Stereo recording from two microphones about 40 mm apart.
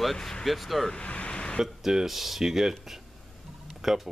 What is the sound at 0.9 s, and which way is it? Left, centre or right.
Speech, left.